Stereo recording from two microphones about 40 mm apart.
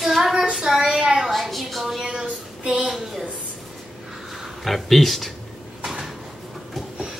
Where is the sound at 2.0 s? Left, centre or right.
Right.